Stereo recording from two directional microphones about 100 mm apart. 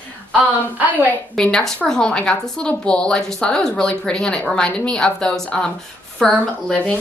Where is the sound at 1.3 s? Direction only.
5° left (ahead or behind).